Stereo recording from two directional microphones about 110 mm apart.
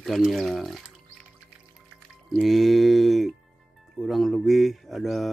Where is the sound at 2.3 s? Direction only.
Centre (ahead or behind).